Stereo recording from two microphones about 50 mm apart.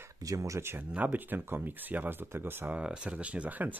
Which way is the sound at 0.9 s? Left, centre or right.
Right.